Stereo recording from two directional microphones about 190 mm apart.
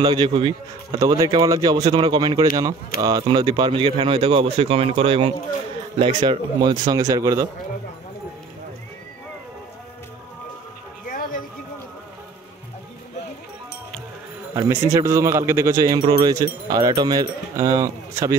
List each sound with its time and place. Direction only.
0.0 s speech: 25° right (ahead or behind)
11.1 s a sound: 45° left (ahead or behind)
14.5 s speech: 15° right (ahead or behind)